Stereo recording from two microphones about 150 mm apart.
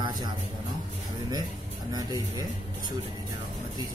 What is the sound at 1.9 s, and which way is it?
Speech, 25° right (ahead or behind).